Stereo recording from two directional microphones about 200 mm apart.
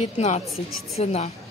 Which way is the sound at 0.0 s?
35° left (ahead or behind).